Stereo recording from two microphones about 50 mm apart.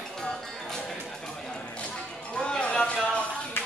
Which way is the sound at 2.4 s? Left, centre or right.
Left.